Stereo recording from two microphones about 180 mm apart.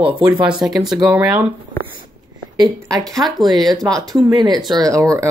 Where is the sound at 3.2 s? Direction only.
Centre (ahead or behind).